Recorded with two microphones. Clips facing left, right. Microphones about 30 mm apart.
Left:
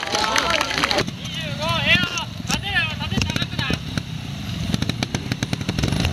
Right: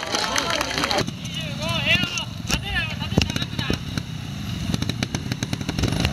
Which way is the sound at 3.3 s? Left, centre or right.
Centre.